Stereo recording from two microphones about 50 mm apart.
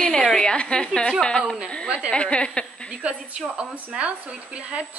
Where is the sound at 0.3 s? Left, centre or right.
Centre.